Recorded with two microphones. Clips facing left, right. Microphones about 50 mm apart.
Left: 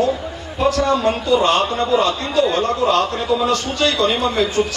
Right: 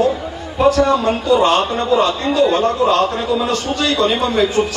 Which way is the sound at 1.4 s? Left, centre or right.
Right.